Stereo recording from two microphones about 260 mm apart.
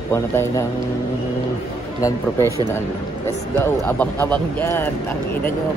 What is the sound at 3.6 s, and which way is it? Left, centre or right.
Speech, centre.